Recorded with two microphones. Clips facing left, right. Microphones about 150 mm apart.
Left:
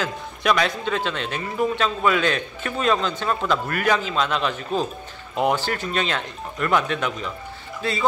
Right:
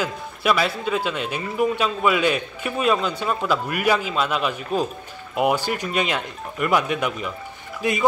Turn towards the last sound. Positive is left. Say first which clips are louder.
# right 3 dB
turn(degrees=-15)  # may be behind; listen again after turning